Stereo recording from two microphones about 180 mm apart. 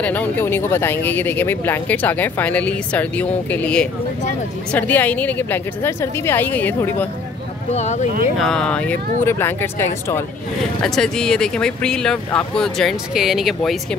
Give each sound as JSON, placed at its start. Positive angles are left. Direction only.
{"t": 0.0, "sound": "speech", "side_deg": 10}
{"t": 7.7, "sound": "speech", "side_deg": 40}
{"t": 8.4, "sound": "speech", "side_deg": 5}